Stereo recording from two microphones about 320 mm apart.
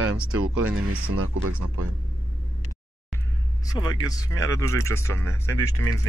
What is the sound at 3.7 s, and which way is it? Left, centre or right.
Speech, centre.